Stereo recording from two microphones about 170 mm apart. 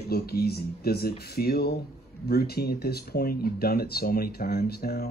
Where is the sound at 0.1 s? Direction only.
65° left (ahead or behind).